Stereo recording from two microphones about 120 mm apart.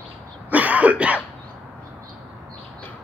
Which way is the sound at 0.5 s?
10° right (ahead or behind).